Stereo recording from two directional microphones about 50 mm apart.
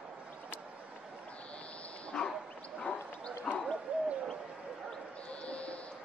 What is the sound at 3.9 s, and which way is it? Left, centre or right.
Owl, right.